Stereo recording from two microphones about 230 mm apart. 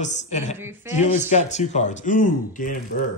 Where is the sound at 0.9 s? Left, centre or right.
Left.